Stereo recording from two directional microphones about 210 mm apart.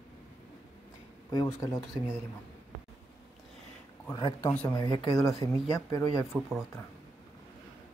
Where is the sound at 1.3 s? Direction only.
15° left (ahead or behind).